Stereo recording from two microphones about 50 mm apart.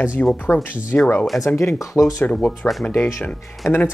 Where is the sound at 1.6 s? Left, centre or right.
Left.